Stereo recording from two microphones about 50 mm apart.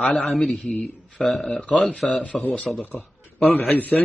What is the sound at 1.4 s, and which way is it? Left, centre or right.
Speech, left.